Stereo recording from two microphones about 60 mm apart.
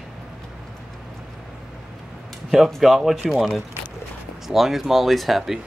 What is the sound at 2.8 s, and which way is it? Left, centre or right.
Speech, centre.